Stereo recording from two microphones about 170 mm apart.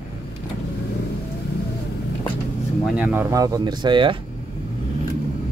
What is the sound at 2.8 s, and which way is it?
Speech, 10° right (ahead or behind).